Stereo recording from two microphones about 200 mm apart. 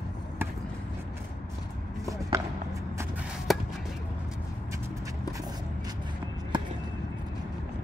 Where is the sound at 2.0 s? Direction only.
15° right (ahead or behind).